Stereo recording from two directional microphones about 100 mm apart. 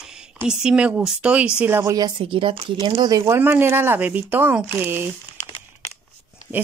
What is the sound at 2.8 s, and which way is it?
Speech, 45° right (ahead or behind).